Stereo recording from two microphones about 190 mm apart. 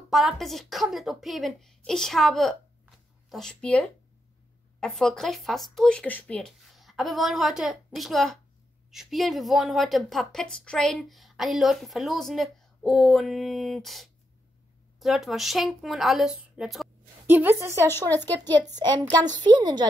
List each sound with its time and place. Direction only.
0.1 s a woman's voice: centre (ahead or behind); by 19.9 s 20° right (ahead or behind)